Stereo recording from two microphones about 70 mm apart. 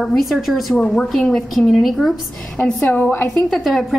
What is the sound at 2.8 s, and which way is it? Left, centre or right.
Speech, left.